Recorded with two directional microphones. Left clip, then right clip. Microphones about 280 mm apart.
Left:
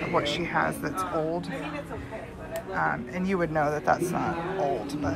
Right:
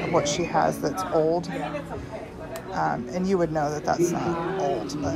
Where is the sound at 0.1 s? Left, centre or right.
Centre.